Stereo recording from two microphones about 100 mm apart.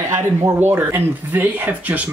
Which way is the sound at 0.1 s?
25° right (ahead or behind).